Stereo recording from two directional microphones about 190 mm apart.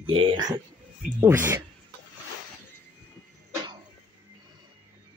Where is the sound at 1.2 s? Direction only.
15° right (ahead or behind).